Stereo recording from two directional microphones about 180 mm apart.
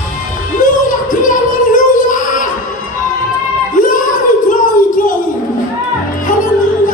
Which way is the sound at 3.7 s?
45° left (ahead or behind).